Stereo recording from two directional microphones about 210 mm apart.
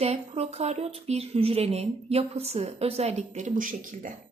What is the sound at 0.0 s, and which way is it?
A woman's voice, 30° right (ahead or behind).